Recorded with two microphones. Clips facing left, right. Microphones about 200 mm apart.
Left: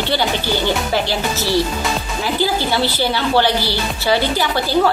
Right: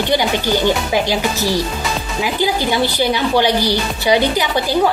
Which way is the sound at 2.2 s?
15° right (ahead or behind).